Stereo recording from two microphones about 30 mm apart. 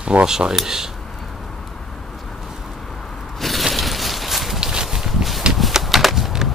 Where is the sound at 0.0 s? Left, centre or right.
Right.